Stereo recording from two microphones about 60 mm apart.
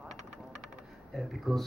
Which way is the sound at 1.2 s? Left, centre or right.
Centre.